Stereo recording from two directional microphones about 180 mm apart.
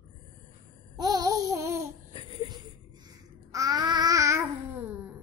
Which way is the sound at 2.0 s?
30° left (ahead or behind).